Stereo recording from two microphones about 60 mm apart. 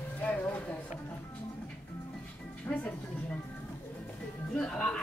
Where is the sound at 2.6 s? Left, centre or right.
Left.